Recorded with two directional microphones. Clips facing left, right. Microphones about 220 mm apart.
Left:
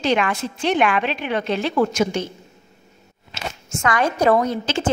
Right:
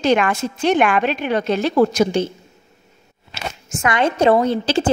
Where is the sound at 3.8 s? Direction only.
25° right (ahead or behind).